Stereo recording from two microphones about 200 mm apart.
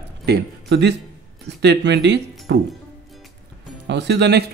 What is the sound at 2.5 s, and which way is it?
Music, 60° right (ahead or behind).